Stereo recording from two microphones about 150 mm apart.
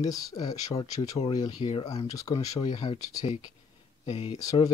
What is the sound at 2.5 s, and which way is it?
Speech, 35° left (ahead or behind).